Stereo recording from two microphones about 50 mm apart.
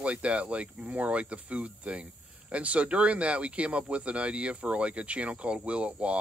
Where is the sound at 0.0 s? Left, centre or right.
Right.